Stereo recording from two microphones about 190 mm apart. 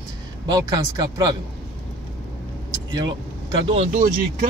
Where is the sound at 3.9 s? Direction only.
45° right (ahead or behind).